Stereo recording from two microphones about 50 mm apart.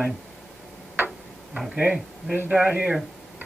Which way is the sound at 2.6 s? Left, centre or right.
Right.